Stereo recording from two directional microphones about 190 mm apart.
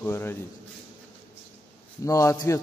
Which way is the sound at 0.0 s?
10° left (ahead or behind).